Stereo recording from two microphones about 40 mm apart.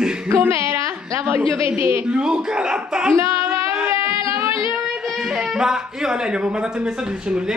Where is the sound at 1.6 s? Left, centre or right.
Right.